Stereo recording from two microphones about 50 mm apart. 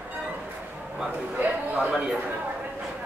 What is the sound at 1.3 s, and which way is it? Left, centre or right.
Speech, right.